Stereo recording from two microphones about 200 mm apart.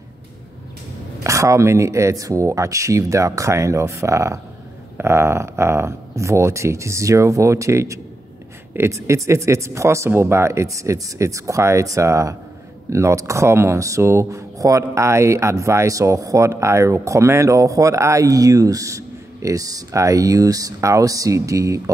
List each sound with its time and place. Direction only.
1.2 s speech: 15° right (ahead or behind)